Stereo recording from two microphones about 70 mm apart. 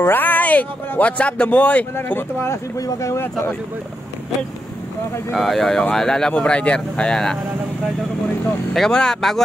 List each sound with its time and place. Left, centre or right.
0.0 s speech: left
2.0 s speech: left
2.8 s speech: left
5.3 s speech: centre
8.7 s speech: centre